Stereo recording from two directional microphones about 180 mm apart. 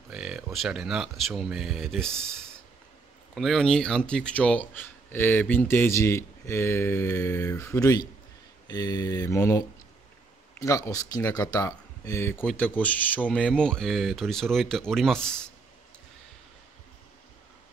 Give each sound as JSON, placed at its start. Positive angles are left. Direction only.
{"t": 0.1, "sound": "speech", "side_deg": -5}
{"t": 8.6, "sound": "mantra", "side_deg": 20}
{"t": 10.6, "sound": "speech", "side_deg": 20}